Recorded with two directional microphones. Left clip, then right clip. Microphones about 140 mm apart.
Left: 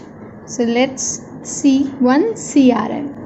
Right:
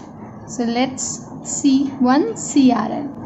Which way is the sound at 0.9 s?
45° right (ahead or behind).